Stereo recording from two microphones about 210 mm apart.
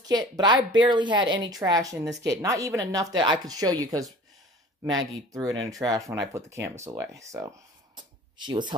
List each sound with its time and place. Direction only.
0.0 s a woman's voice: 20° right (ahead or behind)